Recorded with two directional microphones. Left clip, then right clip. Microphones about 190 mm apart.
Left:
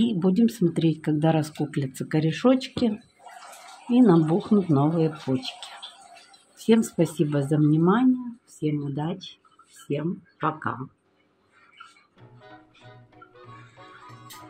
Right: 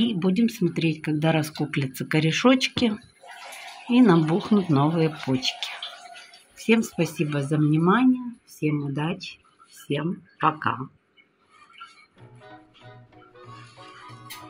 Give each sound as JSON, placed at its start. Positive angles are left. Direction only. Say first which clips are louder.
{"t": 0.0, "sound": "speech", "louder": "left 1 dB", "side_deg": 15}
{"t": 6.6, "sound": "speech", "louder": "left 1 dB", "side_deg": 20}
{"t": 12.4, "sound": "music", "louder": "right 2 dB", "side_deg": 0}